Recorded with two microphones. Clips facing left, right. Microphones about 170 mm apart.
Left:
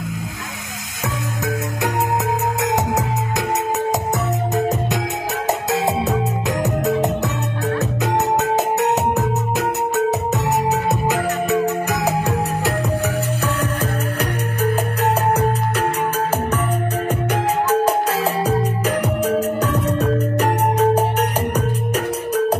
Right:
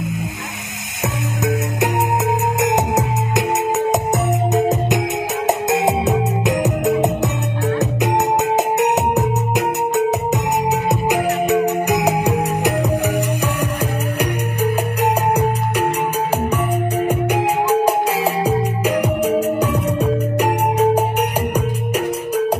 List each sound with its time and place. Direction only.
4.6 s music: 20° right (ahead or behind)
10.9 s music: 15° right (ahead or behind)
17.1 s music: 10° right (ahead or behind)